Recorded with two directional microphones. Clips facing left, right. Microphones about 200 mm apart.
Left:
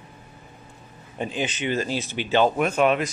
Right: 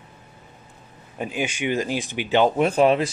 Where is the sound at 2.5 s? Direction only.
30° right (ahead or behind).